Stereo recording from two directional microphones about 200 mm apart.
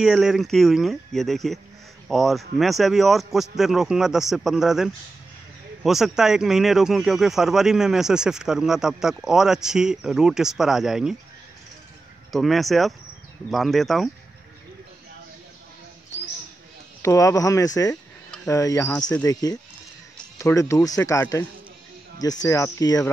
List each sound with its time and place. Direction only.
0.0 s speech: centre (ahead or behind)
12.3 s speech: centre (ahead or behind)
17.0 s speech: 15° left (ahead or behind)